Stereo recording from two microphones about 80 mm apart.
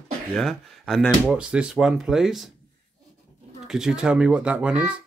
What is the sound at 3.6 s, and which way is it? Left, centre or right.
Speech, centre.